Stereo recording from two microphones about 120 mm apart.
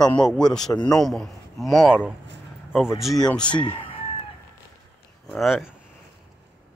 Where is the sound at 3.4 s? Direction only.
40° left (ahead or behind).